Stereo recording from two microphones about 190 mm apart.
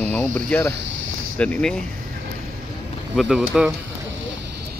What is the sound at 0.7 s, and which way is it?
Speech, 75° right (ahead or behind).